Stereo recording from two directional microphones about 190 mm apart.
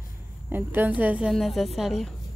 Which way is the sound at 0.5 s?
10° right (ahead or behind).